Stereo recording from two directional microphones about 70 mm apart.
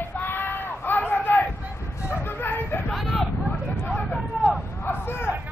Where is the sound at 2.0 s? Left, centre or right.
Left.